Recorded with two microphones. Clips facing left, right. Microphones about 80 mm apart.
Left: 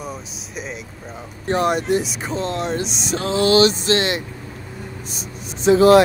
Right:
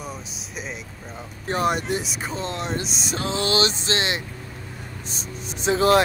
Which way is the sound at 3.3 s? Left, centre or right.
Right.